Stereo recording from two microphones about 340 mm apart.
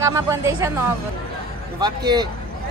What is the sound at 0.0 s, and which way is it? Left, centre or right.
Speech, centre.